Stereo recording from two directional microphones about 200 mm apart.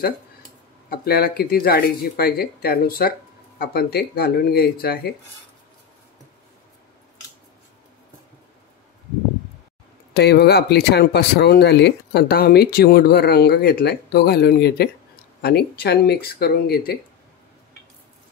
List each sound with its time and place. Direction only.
0.8 s speech: 50° left (ahead or behind)
10.1 s speech: 55° left (ahead or behind)